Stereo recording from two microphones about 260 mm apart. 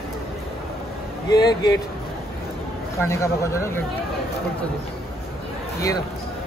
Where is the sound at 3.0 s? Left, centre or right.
Centre.